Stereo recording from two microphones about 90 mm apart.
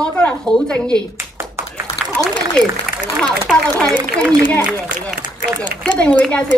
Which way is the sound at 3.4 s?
5° left (ahead or behind).